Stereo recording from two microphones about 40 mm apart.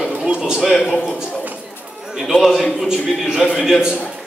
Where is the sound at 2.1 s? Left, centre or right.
Centre.